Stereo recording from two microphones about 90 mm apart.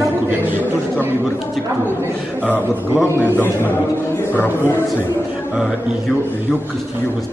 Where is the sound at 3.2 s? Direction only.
25° left (ahead or behind).